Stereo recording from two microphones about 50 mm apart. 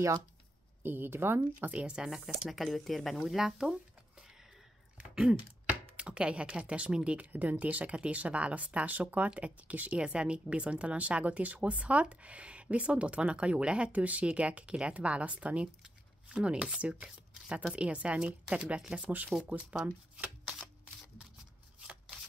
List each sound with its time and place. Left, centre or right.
0.8 s speech: right
1.4 s a woman's voice: right
2.0 s speech: centre
5.9 s a woman's voice: right
9.9 s a woman's voice: centre
19.0 s a woman's voice: right